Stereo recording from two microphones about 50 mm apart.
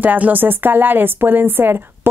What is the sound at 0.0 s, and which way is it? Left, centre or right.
Speech, right.